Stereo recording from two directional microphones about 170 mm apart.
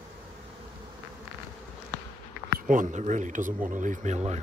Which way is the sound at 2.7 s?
50° right (ahead or behind).